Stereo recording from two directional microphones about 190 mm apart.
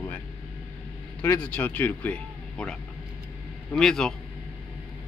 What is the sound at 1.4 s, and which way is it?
A man's voice, 10° left (ahead or behind).